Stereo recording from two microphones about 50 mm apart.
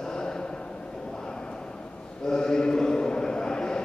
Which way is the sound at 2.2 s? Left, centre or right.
Centre.